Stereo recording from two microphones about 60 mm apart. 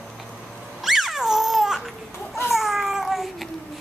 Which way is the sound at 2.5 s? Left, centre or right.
Centre.